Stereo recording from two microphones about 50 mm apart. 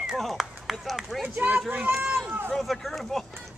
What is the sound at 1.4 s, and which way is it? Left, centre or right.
Run, right.